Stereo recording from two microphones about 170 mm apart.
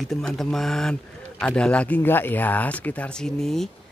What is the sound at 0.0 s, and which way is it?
Speech, centre (ahead or behind).